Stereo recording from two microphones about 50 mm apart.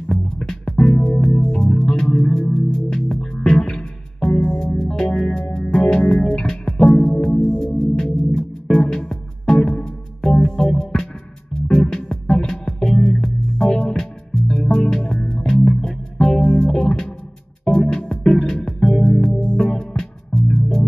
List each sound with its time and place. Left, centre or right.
0.0 s music: centre